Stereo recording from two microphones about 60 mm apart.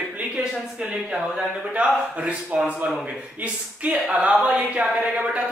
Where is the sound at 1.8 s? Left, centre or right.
Right.